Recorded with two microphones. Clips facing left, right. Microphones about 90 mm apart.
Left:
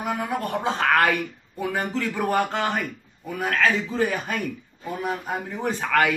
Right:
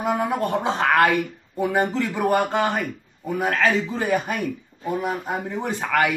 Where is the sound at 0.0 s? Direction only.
25° right (ahead or behind).